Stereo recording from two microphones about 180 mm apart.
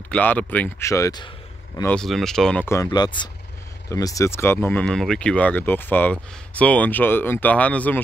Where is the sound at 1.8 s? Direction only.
5° left (ahead or behind).